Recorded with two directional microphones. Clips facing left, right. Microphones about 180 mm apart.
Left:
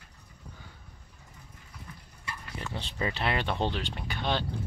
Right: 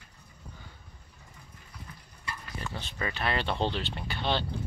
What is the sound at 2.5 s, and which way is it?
Speech, 20° left (ahead or behind).